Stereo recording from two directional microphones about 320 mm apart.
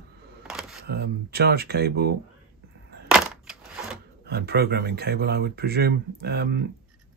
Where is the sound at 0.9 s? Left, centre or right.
Right.